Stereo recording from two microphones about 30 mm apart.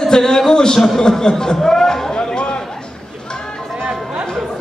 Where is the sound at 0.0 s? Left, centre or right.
Centre.